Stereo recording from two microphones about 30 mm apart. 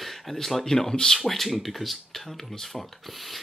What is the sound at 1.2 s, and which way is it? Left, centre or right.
Speech, centre.